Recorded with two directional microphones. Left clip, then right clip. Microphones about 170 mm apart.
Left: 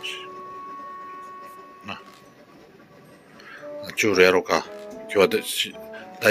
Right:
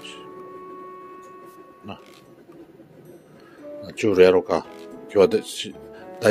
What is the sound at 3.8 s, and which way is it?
Speech, 20° right (ahead or behind).